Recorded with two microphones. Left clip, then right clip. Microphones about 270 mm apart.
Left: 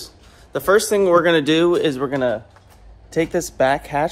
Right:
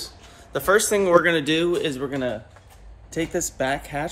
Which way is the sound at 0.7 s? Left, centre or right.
Left.